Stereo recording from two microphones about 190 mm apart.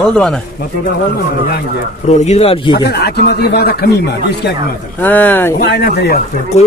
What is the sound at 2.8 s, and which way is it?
Speech, 55° left (ahead or behind).